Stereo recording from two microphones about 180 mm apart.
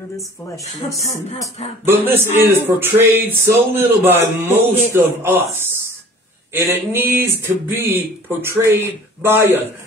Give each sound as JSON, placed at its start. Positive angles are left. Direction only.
{"t": 0.9, "sound": "music", "side_deg": 35}
{"t": 1.9, "sound": "a man's voice", "side_deg": -10}